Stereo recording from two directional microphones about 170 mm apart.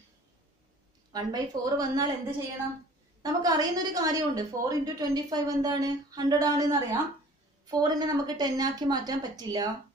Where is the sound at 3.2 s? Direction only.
20° right (ahead or behind).